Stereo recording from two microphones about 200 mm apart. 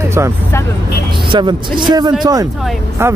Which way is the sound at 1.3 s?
25° right (ahead or behind).